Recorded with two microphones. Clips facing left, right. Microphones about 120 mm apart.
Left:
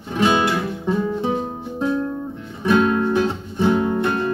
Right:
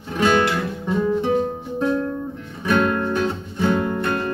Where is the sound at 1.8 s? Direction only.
10° left (ahead or behind).